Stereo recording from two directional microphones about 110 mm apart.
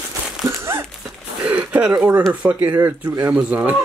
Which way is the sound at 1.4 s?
10° right (ahead or behind).